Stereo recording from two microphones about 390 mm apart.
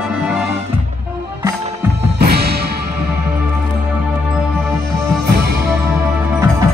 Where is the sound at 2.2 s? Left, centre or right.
Right.